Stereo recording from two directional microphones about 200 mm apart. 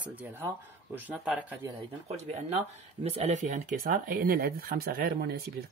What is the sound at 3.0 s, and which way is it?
Speech, 35° right (ahead or behind).